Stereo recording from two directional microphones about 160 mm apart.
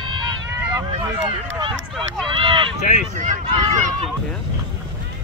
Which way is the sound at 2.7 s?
50° left (ahead or behind).